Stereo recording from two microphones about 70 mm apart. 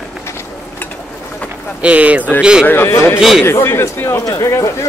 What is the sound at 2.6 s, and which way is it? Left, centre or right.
A man's voice, left.